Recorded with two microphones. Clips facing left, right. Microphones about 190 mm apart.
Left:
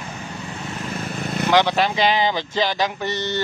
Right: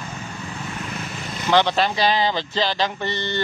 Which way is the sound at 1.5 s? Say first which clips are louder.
Even; 10° left (ahead or behind).